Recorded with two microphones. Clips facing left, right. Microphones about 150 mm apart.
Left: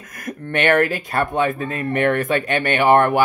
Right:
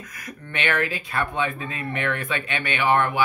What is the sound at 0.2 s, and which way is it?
Speech, 50° left (ahead or behind).